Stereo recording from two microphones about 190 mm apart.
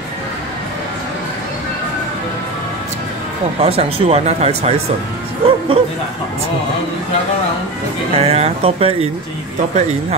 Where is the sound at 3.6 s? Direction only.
35° right (ahead or behind).